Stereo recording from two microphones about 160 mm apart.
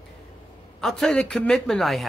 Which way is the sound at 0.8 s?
Centre (ahead or behind).